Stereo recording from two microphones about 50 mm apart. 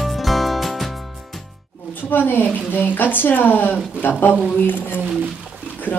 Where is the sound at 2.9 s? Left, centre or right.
Left.